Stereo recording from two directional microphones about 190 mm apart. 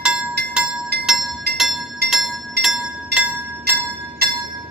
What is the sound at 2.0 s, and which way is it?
Bell, 60° right (ahead or behind).